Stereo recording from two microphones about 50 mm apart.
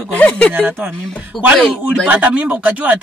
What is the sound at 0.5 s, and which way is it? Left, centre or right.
Speech, right.